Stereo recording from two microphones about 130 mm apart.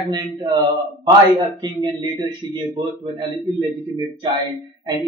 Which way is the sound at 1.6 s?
30° right (ahead or behind).